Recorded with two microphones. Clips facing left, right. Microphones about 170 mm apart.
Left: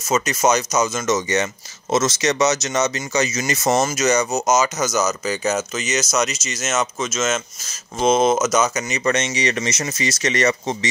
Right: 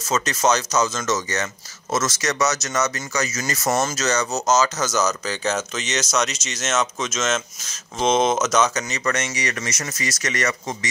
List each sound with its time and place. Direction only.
0.1 s speech: 10° left (ahead or behind)
9.0 s speech: 20° left (ahead or behind)